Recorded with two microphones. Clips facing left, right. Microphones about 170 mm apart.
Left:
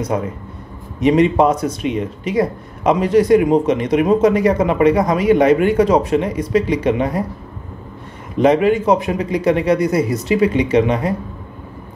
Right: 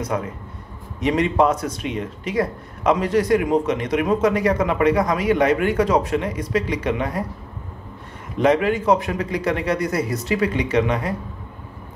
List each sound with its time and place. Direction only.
0.1 s speech: 25° left (ahead or behind)
8.4 s speech: 20° left (ahead or behind)